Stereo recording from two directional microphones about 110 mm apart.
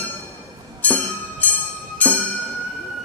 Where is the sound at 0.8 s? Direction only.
15° left (ahead or behind).